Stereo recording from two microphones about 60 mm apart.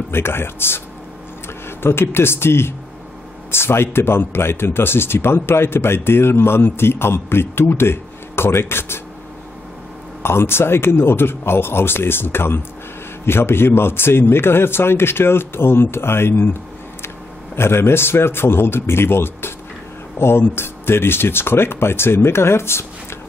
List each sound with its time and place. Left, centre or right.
0.1 s speech: left
10.2 s speech: left
17.6 s speech: left